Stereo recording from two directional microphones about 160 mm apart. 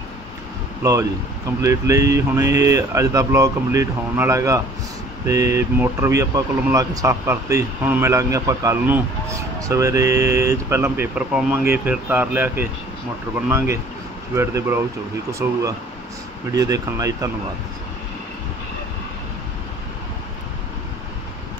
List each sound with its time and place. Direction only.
0.8 s speech: 20° right (ahead or behind)